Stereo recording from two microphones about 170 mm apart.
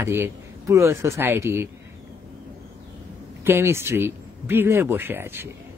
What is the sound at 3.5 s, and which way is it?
Speech, 15° right (ahead or behind).